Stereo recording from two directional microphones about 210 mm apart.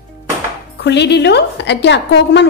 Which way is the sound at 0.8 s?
55° left (ahead or behind).